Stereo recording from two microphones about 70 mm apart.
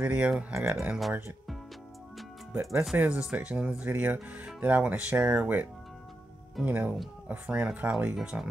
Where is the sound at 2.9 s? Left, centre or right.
Centre.